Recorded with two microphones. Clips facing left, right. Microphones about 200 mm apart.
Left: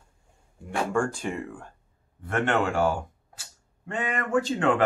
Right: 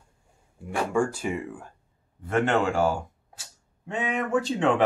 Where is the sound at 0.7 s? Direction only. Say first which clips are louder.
Right 1 dB; 5° right (ahead or behind).